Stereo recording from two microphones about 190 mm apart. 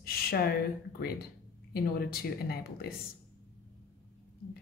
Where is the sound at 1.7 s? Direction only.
55° left (ahead or behind).